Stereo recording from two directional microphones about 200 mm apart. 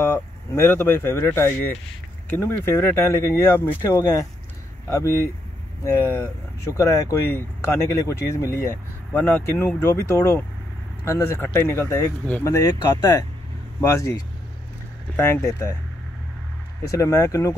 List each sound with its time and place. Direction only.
0.0 s speech: 10° left (ahead or behind)
16.9 s speech: 15° left (ahead or behind)